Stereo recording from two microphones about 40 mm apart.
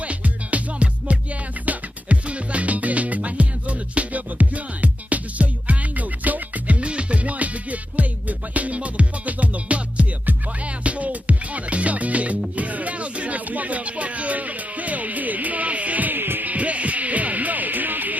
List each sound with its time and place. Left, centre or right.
0.0 s music: right
6.8 s music: right
16.5 s music: right